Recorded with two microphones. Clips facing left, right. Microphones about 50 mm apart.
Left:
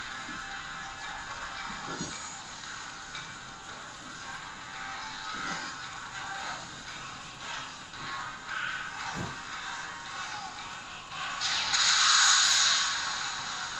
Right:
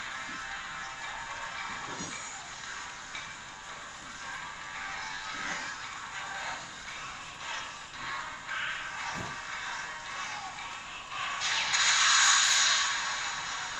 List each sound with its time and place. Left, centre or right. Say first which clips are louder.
1.6 s train: even; centre
4.8 s music: even; right
6.1 s vehicle: even; right
7.4 s music: right 1 dB; right